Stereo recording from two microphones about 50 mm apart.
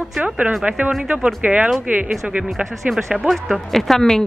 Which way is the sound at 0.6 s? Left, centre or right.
Right.